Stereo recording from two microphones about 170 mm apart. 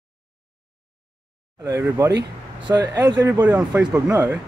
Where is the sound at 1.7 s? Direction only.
20° right (ahead or behind).